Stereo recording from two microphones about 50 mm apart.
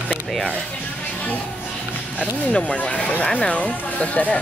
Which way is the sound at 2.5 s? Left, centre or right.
Left.